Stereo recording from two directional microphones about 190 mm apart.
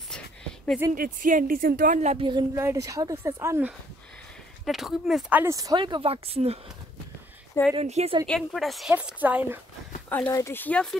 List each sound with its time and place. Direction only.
0.9 s speech: 45° right (ahead or behind); by 2.4 s 25° right (ahead or behind)
2.5 s speech: 15° right (ahead or behind)
4.6 s speech: centre (ahead or behind); by 6.6 s 30° right (ahead or behind)
7.7 s a woman's voice: 35° right (ahead or behind)
8.3 s speech: centre (ahead or behind)
10.0 s speech: 10° left (ahead or behind)